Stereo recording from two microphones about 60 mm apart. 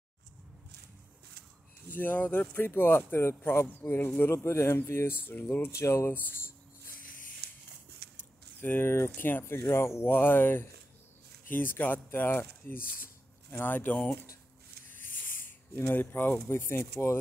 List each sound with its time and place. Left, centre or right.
1.9 s speech: left
5.7 s speech: left
6.3 s a sound: left
8.5 s speech: left
10.0 s speech: left
15.4 s speech: left
16.4 s speech: left